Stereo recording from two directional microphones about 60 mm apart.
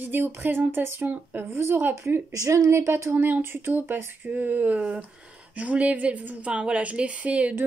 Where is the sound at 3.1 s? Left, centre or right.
Right.